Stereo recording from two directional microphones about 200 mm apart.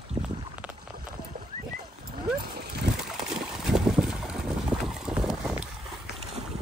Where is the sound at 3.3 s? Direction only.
5° right (ahead or behind).